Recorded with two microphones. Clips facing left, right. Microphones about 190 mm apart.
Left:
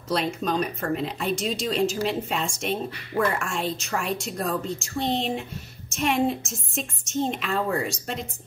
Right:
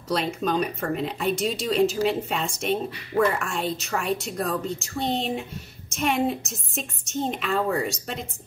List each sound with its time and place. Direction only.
0.1 s speech: centre (ahead or behind)